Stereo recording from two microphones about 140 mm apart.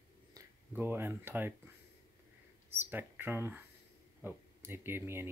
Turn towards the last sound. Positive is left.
turn(degrees=-15)  # may be behind; listen again after turning